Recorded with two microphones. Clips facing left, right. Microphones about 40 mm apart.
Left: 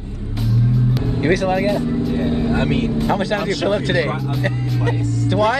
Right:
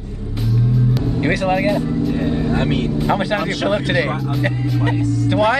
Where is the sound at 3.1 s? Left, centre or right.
Centre.